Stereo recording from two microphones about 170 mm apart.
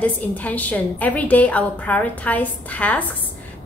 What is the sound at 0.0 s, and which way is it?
A woman's voice, 10° left (ahead or behind).